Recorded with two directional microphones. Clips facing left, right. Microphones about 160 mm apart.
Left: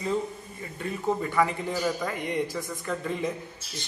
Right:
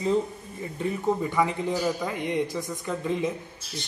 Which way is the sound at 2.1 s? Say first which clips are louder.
Right 2 dB; 20° right (ahead or behind).